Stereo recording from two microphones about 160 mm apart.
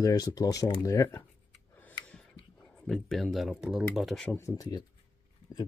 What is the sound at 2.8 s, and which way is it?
Speech, centre (ahead or behind).